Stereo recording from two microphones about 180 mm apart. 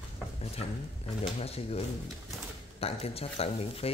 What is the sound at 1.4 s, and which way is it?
A man's voice, 35° left (ahead or behind).